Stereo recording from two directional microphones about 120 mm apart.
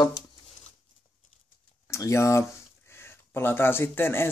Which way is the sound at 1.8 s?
25° left (ahead or behind).